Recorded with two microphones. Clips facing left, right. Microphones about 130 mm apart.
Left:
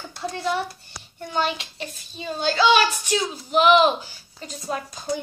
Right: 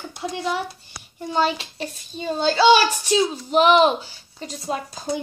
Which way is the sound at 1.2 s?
35° right (ahead or behind).